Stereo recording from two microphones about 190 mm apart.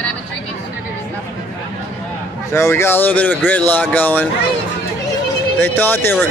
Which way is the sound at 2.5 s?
15° left (ahead or behind).